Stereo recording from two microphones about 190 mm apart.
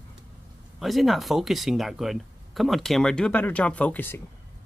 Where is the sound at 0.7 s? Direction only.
Centre (ahead or behind).